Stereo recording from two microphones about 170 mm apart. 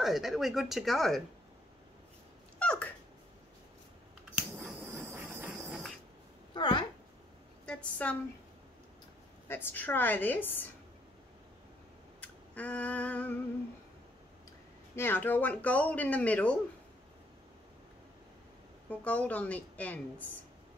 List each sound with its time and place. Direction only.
0.0 s speech: centre (ahead or behind)
2.6 s cat: 5° left (ahead or behind)
4.4 s a sound: 10° right (ahead or behind)
5.7 s train: centre (ahead or behind)
6.5 s a sound: 25° left (ahead or behind)
7.6 s a woman's voice: 5° left (ahead or behind)
9.5 s speech: 10° left (ahead or behind)
12.2 s a sound: 10° left (ahead or behind)
15.0 s speech: 10° left (ahead or behind)
18.9 s speech: 10° left (ahead or behind)